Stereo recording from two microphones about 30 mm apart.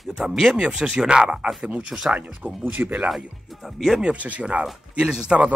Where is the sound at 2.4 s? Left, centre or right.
Right.